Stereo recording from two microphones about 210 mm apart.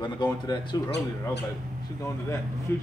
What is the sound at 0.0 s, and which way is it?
Speech, 20° left (ahead or behind).